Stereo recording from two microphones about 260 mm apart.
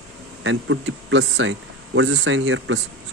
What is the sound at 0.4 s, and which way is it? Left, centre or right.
Speech, right.